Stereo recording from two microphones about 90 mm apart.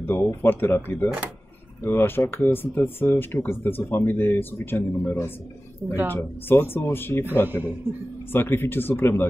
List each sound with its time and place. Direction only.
0.0 s speech: 25° left (ahead or behind)
7.4 s a man's voice: 20° right (ahead or behind)
8.3 s speech: 25° left (ahead or behind)